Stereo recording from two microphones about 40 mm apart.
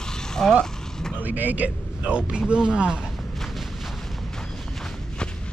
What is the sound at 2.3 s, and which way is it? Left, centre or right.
Speech, centre.